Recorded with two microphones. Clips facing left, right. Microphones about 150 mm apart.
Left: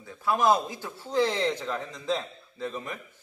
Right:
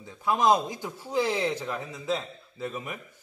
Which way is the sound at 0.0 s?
20° right (ahead or behind).